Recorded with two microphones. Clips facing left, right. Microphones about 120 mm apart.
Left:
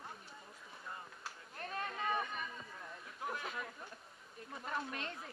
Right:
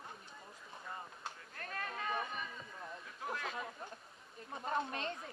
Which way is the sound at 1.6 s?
25° left (ahead or behind).